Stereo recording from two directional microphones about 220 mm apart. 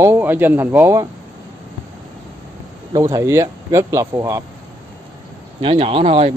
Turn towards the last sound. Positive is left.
turn(degrees=-25)  # may be behind; listen again after turning